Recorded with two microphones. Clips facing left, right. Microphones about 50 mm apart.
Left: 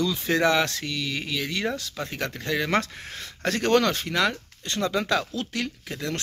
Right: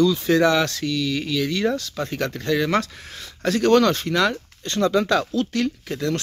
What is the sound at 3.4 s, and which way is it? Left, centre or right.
Speech, left.